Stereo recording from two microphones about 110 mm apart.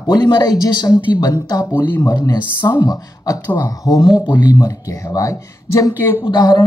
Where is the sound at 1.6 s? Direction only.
20° left (ahead or behind).